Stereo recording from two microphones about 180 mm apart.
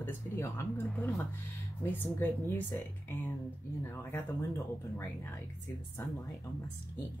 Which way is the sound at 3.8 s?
15° left (ahead or behind).